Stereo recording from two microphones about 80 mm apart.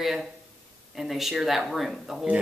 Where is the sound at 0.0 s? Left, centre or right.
Centre.